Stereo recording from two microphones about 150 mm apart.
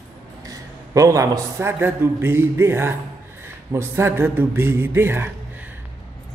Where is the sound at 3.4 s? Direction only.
15° right (ahead or behind).